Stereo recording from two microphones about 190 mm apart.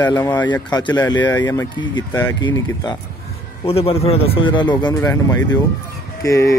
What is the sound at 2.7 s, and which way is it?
Speech, 20° left (ahead or behind).